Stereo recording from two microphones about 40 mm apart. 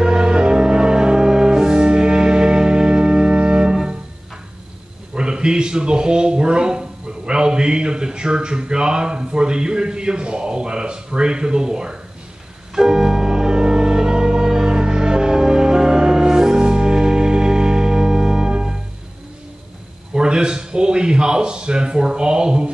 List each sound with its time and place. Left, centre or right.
0.0 s music: centre
5.1 s a man's voice: right
12.7 s organ: centre
20.2 s a sound: right